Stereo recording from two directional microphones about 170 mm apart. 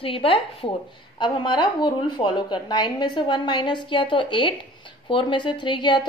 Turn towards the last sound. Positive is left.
turn(degrees=25)  # may be behind; listen again after turning